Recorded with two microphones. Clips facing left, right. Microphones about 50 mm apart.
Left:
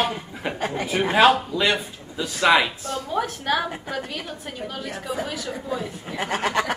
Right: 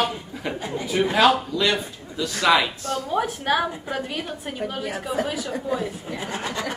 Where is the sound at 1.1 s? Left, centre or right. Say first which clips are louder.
Left 3 dB; left.